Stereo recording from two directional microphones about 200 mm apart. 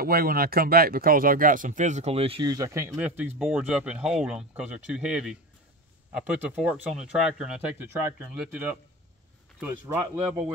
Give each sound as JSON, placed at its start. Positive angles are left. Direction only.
{"t": 0.0, "sound": "speech", "side_deg": -50}